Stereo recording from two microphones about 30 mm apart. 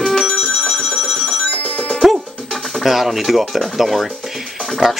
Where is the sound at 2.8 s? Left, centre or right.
Centre.